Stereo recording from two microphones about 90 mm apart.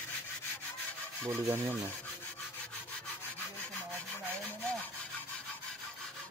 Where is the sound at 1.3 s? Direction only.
25° right (ahead or behind).